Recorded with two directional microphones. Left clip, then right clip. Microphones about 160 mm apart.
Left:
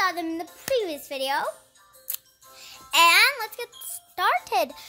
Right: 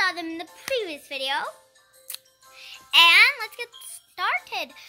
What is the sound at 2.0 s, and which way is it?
Music, 35° left (ahead or behind).